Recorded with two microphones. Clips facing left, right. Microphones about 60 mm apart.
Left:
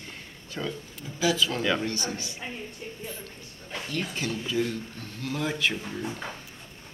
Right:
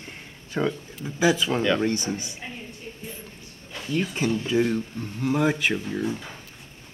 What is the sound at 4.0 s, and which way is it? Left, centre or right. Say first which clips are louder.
Speech: right 7 dB; right.